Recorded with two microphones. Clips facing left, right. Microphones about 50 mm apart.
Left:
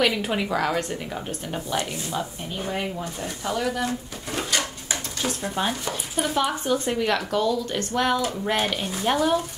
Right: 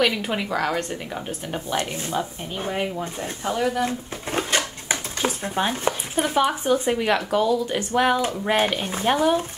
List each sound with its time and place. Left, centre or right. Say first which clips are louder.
0.0 s a woman's voice: even; centre
2.1 s speech: right 3 dB; centre
3.8 s dishes: right 2 dB; right
5.5 s speech: right 3 dB; centre